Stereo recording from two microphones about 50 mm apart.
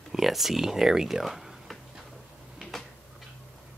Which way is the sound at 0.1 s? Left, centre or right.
Centre.